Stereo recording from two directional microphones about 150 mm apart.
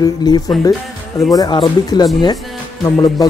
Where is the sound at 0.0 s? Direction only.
25° left (ahead or behind).